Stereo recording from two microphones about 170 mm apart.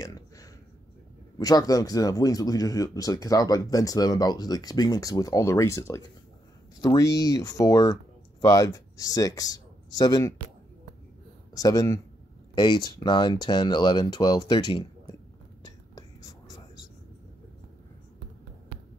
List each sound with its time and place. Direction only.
0.0 s a sound: 20° left (ahead or behind)
1.4 s speech: 20° left (ahead or behind)
11.5 s speech: 20° left (ahead or behind)